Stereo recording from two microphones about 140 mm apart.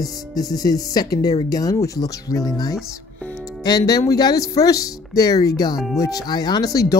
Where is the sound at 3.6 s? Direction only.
30° left (ahead or behind).